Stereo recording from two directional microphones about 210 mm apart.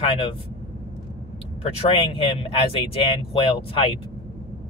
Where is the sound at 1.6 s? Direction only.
25° left (ahead or behind).